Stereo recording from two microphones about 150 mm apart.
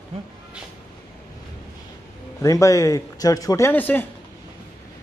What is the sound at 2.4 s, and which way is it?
Speech, 20° left (ahead or behind).